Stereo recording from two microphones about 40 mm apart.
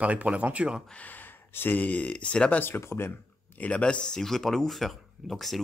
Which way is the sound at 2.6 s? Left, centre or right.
Left.